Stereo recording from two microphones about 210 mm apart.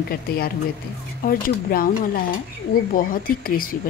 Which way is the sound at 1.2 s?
45° left (ahead or behind).